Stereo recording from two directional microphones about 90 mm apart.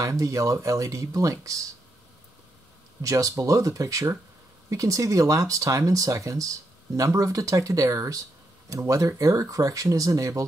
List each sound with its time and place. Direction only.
0.0 s speech: 35° right (ahead or behind)
3.0 s speech: 40° right (ahead or behind)